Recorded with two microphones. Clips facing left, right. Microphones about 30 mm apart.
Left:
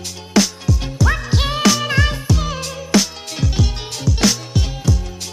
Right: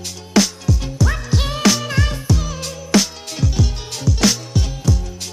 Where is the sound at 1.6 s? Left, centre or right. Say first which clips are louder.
Left 1 dB; centre.